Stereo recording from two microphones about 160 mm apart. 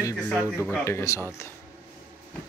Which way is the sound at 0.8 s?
20° left (ahead or behind).